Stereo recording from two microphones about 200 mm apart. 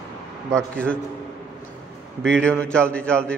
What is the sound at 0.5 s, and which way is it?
Speech, 5° left (ahead or behind).